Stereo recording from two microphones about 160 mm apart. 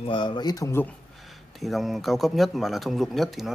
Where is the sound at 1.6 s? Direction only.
Centre (ahead or behind).